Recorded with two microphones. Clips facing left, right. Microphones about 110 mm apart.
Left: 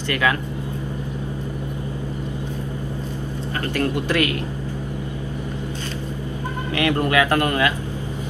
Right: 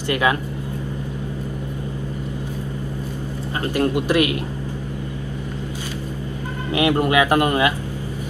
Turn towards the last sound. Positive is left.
turn(degrees=-20)  # may be behind; listen again after turning